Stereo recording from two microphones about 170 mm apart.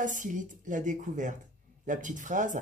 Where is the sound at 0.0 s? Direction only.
50° right (ahead or behind).